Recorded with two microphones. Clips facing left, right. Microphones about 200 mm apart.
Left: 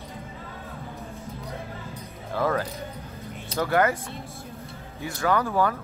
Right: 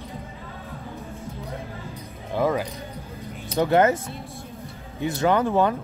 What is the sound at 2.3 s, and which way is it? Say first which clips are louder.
Speech: right 2 dB; 15° right (ahead or behind).